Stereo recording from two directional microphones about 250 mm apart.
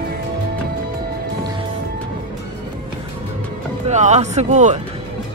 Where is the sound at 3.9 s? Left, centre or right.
Right.